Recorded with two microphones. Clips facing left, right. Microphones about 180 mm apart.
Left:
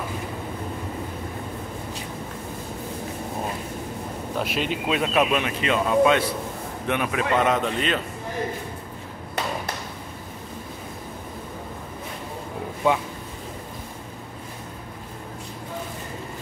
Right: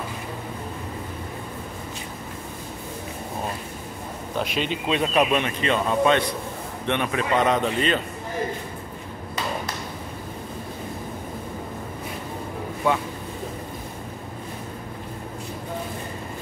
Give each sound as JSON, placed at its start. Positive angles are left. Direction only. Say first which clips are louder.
{"t": 4.4, "sound": "speech", "louder": "even", "side_deg": 5}
{"t": 12.8, "sound": "speech", "louder": "left 1 dB", "side_deg": 20}